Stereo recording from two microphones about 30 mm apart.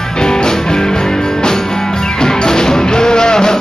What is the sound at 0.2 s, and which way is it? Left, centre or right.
Music, left.